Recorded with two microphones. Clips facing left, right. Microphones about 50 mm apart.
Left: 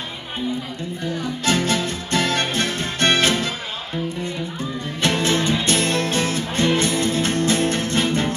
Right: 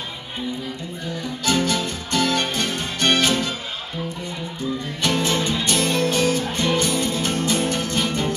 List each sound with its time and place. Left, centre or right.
1.4 s music: left
5.0 s music: left